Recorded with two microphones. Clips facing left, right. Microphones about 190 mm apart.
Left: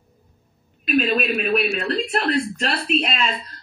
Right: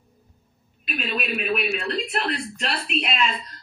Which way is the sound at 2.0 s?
40° left (ahead or behind).